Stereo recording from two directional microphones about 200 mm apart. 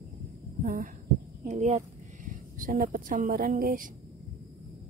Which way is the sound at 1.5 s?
35° right (ahead or behind).